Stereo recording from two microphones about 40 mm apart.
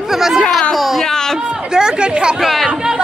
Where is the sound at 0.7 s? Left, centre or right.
Centre.